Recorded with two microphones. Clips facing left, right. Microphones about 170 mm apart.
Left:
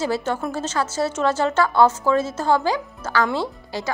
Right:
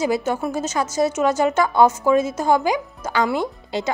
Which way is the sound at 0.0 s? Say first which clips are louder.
Right 2 dB; 10° right (ahead or behind).